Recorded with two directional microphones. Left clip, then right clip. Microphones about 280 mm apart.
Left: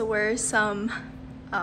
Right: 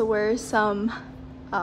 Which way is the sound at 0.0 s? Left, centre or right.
Centre.